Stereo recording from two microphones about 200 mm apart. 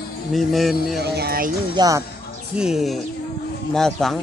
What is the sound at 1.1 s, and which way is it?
Speech, 50° right (ahead or behind).